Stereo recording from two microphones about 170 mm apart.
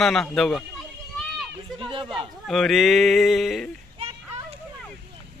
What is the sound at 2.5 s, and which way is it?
A man's voice, centre (ahead or behind).